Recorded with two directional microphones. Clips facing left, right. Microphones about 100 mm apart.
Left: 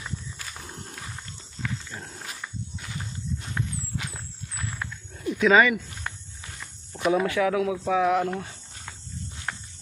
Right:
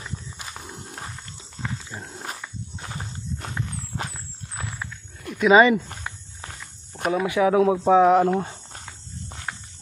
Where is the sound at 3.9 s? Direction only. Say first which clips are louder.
Right 4 dB; 35° right (ahead or behind).